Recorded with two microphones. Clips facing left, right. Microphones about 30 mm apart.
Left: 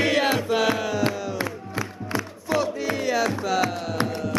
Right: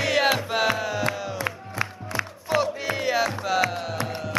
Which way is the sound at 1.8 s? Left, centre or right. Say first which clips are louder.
Right 2 dB; left.